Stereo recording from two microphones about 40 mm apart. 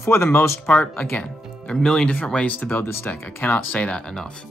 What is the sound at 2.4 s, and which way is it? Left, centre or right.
Speech, left.